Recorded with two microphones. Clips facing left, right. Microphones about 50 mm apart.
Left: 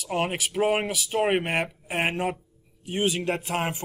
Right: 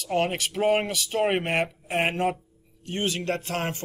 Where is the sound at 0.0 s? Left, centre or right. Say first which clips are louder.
Right 2 dB; centre.